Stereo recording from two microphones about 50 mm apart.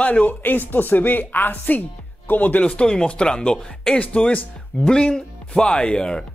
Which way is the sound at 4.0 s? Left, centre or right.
Left.